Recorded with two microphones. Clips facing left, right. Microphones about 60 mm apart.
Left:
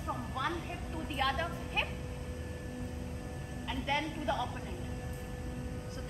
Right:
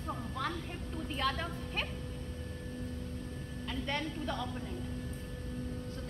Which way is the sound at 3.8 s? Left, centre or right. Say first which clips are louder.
Left 4 dB; centre.